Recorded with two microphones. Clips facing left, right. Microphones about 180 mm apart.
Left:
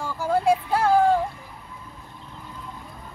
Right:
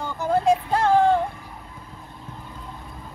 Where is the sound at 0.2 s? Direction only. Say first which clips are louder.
Right 1 dB; 10° left (ahead or behind).